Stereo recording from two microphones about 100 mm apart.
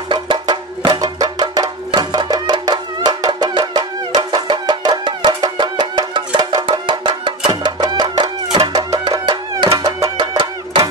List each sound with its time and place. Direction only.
0.1 s music: 50° right (ahead or behind)